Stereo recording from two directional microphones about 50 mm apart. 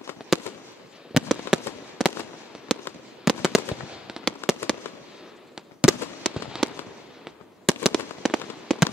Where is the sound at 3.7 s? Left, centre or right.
Centre.